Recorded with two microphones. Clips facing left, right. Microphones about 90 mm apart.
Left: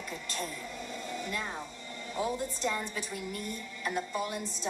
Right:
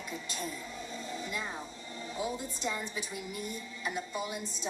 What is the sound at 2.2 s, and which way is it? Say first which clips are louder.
Speech: left 3 dB; 50° left (ahead or behind).